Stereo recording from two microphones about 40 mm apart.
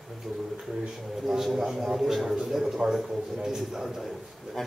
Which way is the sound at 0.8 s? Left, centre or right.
Centre.